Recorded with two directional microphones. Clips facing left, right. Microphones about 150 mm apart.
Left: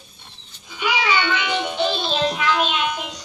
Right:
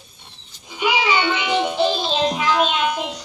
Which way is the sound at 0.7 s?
10° right (ahead or behind).